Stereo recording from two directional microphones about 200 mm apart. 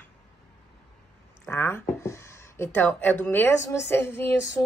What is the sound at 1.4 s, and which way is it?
A woman's voice, 10° left (ahead or behind).